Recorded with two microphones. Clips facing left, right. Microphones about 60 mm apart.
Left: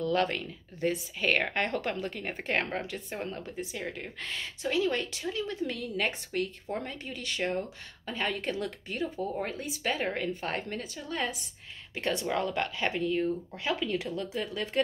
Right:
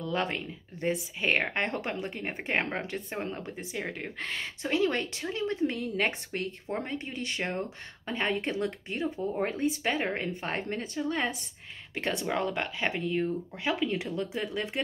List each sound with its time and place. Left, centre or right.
0.0 s a woman's voice: right